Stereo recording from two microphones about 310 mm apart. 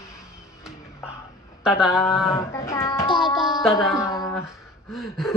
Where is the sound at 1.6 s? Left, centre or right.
Centre.